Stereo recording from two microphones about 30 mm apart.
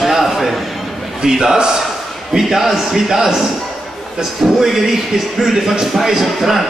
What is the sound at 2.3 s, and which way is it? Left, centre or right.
A man's voice, centre.